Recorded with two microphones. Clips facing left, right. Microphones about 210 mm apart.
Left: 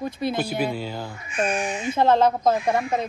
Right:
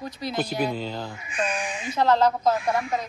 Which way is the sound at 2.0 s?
20° left (ahead or behind).